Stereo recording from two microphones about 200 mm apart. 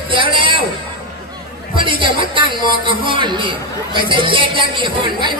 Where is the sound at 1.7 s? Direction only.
25° right (ahead or behind).